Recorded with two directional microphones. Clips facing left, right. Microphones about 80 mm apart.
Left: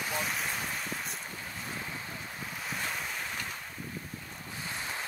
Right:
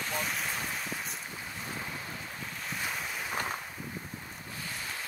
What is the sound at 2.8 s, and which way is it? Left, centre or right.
Boat, centre.